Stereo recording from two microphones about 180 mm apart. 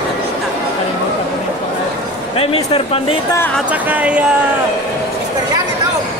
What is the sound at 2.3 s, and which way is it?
Speech, 35° left (ahead or behind).